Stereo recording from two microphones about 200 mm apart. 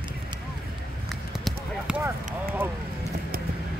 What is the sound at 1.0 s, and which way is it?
Clip-clop, centre (ahead or behind).